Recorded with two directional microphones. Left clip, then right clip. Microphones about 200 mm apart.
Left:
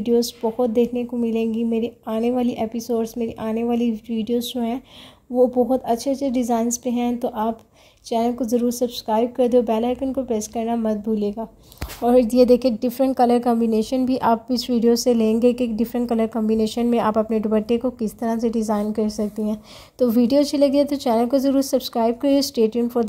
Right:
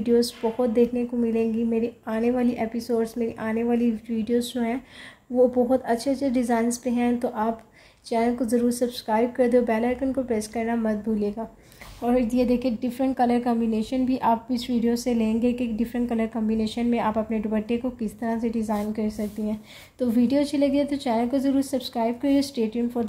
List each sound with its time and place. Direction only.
0.0 s a woman's voice: 25° left (ahead or behind)
12.0 s a woman's voice: 40° left (ahead or behind)